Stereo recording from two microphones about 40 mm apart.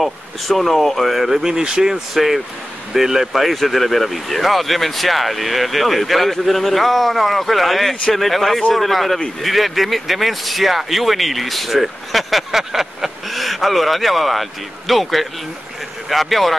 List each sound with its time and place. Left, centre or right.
0.0 s speech: centre
1.4 s speech: centre
2.1 s speech: centre
3.4 s speech: centre